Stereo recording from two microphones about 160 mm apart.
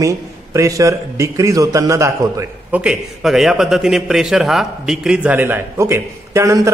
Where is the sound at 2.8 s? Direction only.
5° right (ahead or behind).